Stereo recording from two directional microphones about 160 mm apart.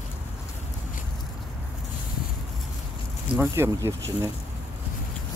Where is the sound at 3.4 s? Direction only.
15° right (ahead or behind).